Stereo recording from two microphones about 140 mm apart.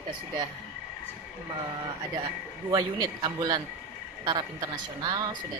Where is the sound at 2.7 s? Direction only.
30° right (ahead or behind).